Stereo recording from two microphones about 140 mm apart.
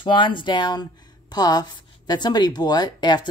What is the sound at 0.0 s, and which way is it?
Speech, 35° left (ahead or behind).